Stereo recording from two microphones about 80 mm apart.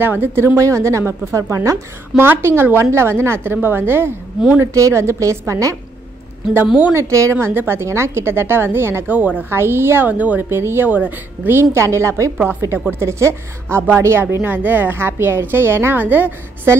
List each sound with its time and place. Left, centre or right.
0.0 s a woman's voice: right
0.6 s a woman's voice: right
4.6 s a woman's voice: right
6.9 s a woman's voice: right
7.3 s a woman's voice: right
11.7 s a woman's voice: right